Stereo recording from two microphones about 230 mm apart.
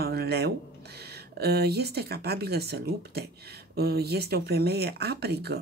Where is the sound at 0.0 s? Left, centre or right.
Right.